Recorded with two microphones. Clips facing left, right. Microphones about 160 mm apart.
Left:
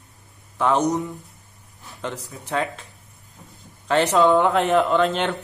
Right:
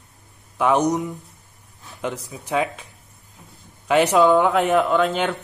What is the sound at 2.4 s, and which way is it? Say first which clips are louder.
A man's voice: right 3 dB; 15° right (ahead or behind).